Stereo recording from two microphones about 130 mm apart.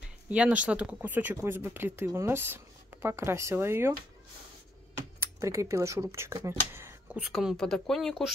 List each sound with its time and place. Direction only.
0.3 s speech: 10° right (ahead or behind)
5.4 s speech: 25° right (ahead or behind)
7.2 s speech: 5° right (ahead or behind)